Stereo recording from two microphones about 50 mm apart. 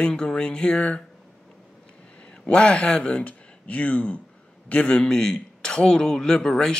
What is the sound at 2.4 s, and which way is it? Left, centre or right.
Speech, left.